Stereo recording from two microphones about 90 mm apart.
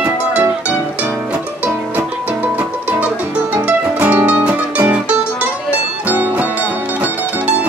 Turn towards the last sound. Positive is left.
turn(degrees=-20)  # may be behind; listen again after turning